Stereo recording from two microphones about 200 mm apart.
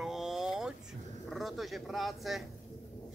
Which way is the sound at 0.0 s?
Centre (ahead or behind).